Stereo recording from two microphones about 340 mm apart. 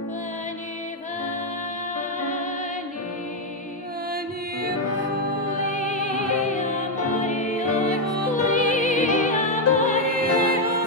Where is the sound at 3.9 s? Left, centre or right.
Right.